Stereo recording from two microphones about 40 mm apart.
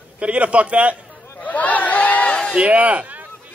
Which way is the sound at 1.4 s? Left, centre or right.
Left.